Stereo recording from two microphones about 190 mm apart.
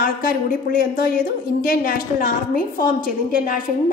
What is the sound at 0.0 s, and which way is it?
A woman's voice, 50° left (ahead or behind).